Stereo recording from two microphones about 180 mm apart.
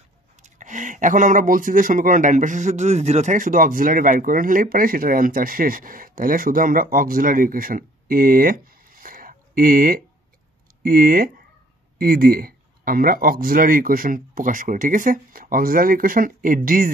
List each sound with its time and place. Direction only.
0.4 s speech: 45° right (ahead or behind)